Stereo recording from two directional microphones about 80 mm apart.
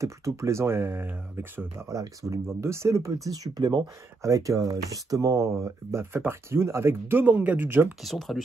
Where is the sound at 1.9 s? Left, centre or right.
Right.